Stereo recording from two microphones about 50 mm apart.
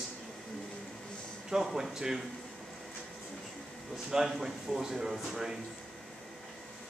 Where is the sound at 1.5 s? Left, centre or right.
Centre.